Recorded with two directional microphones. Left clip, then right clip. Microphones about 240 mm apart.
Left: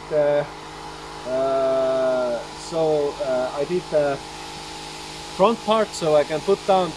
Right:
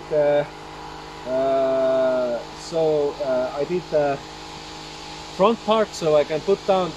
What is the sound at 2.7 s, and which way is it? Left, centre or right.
Speech, centre.